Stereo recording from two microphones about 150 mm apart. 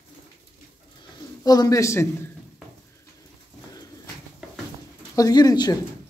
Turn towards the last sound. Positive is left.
turn(degrees=25)  # may be behind; listen again after turning